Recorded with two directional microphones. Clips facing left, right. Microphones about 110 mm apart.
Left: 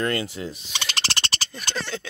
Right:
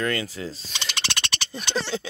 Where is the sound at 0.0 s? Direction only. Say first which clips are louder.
Left 1 dB; 30° left (ahead or behind).